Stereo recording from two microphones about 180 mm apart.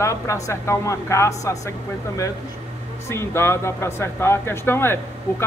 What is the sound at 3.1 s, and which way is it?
Speech, 15° left (ahead or behind).